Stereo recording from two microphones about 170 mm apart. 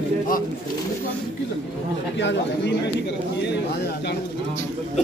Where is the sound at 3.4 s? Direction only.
75° left (ahead or behind).